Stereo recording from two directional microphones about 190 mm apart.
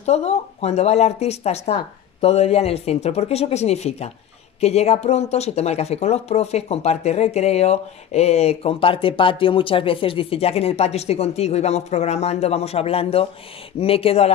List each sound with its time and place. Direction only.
0.0 s speech: 35° left (ahead or behind)